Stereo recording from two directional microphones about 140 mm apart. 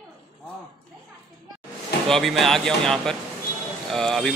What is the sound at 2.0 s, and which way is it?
Speech, centre (ahead or behind).